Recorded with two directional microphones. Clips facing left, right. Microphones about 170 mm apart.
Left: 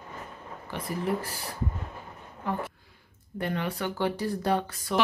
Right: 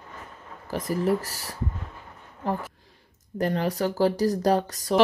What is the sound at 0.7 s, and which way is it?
Speech, 40° right (ahead or behind).